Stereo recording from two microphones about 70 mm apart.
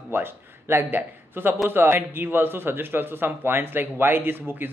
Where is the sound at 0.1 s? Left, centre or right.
Right.